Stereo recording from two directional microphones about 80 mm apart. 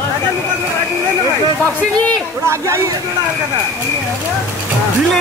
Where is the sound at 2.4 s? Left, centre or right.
Right.